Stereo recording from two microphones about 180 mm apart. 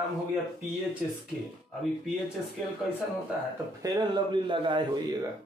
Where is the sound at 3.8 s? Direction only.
25° right (ahead or behind).